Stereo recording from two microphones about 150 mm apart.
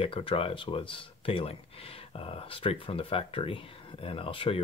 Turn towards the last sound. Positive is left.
turn(degrees=35)  # may be behind; listen again after turning